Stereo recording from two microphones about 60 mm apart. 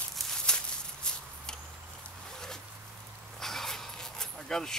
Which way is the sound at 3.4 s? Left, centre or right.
Centre.